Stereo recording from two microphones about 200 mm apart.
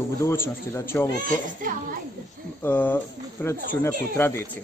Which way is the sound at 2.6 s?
10° left (ahead or behind).